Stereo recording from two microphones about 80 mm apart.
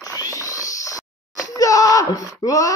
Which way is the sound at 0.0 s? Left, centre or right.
Left.